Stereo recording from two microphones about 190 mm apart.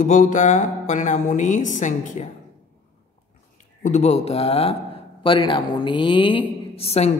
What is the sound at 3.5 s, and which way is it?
Speech, 40° left (ahead or behind).